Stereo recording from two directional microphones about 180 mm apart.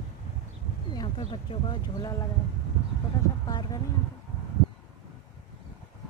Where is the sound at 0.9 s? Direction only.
25° left (ahead or behind).